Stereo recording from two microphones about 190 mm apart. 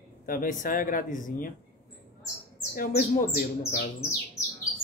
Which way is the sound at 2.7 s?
50° left (ahead or behind).